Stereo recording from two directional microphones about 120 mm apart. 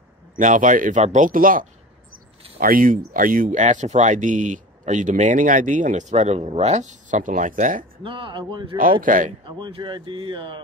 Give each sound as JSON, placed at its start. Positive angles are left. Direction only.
{"t": 0.4, "sound": "speech", "side_deg": -90}
{"t": 3.2, "sound": "speech", "side_deg": -90}
{"t": 8.0, "sound": "a man's voice", "side_deg": -45}